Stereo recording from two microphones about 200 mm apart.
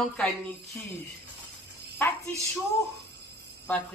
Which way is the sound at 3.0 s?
55° right (ahead or behind).